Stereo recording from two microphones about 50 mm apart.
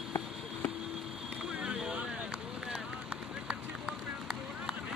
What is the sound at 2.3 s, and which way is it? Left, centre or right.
Run, centre.